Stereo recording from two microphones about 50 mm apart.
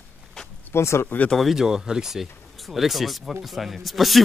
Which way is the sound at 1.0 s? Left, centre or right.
Left.